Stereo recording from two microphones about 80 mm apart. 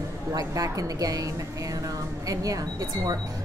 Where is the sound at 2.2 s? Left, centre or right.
Right.